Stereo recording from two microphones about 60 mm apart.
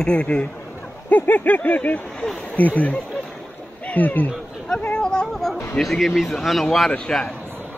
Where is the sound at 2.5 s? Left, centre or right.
Left.